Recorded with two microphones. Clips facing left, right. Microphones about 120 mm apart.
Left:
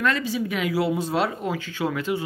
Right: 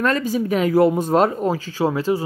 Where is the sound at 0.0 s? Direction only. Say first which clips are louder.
Right 4 dB; 45° right (ahead or behind).